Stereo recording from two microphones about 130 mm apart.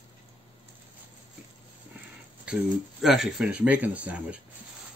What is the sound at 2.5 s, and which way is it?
Speech, 5° right (ahead or behind).